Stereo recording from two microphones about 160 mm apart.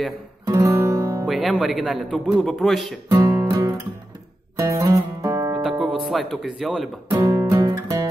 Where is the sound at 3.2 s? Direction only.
20° right (ahead or behind).